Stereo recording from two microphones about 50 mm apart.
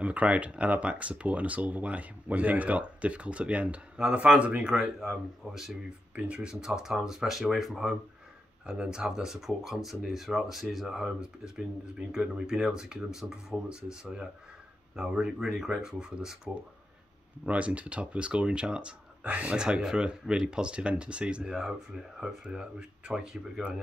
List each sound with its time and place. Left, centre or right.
0.0 s speech: right
4.7 s speech: centre
6.1 s speech: right; by 7.9 s centre
8.9 s speech: centre
11.1 s speech: centre
17.5 s speech: right; by 23.6 s centre